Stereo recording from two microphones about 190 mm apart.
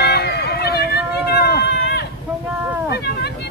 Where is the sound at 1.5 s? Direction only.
60° left (ahead or behind).